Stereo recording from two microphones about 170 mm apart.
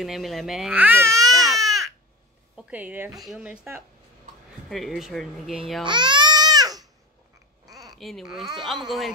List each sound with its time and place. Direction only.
0.0 s speech: centre (ahead or behind); by 1.3 s 15° right (ahead or behind)
1.3 s baby cry: centre (ahead or behind)
2.5 s a woman's voice: 10° right (ahead or behind)
4.6 s speech: centre (ahead or behind)
5.9 s baby cry: 25° right (ahead or behind)
7.6 s a sound: 20° right (ahead or behind)
7.9 s speech: centre (ahead or behind)